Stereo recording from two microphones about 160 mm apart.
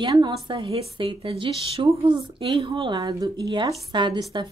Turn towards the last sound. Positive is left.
turn(degrees=-30)  # may be behind; listen again after turning